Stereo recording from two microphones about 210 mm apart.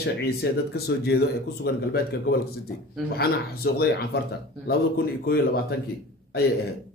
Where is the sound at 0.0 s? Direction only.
50° left (ahead or behind).